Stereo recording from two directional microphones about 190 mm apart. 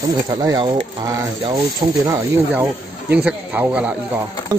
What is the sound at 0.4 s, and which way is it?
Speech, 20° right (ahead or behind).